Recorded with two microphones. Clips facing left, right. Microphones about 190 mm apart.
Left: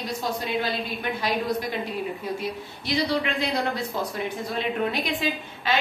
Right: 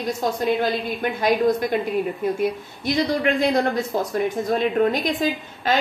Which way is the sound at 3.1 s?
45° right (ahead or behind).